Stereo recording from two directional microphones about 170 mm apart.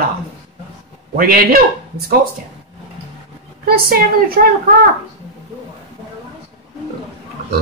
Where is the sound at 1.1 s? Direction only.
55° right (ahead or behind).